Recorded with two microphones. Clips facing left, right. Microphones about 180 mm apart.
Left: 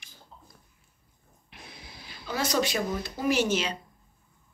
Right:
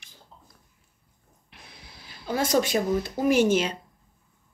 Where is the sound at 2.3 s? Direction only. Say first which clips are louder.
Right 4 dB; 50° right (ahead or behind).